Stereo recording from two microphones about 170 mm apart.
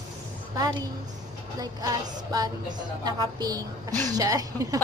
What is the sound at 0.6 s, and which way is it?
Speech, 20° right (ahead or behind).